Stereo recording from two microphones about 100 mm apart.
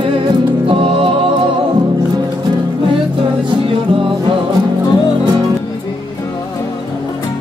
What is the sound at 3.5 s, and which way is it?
Music, 60° right (ahead or behind).